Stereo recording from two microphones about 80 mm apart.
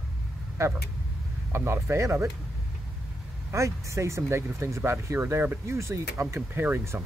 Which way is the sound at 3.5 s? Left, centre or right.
Right.